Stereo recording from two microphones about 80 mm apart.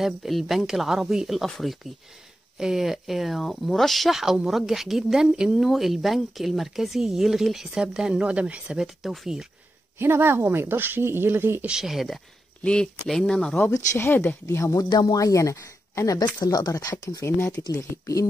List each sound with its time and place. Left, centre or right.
0.0 s speech: centre
8.8 s speech: centre
9.9 s speech: right
11.6 s speech: centre
12.6 s speech: centre
13.9 s speech: left
14.4 s speech: left
14.9 s speech: left
15.1 s speech: left
16.3 s speech: left
17.2 s speech: left